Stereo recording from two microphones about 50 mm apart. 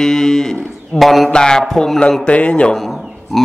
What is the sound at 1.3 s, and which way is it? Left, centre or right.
Speech, centre.